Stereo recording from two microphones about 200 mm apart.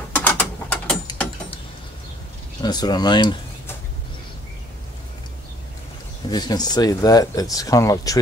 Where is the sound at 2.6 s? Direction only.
20° left (ahead or behind).